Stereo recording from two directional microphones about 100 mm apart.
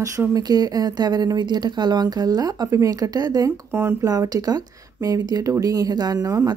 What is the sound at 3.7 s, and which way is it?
Speech, 25° right (ahead or behind).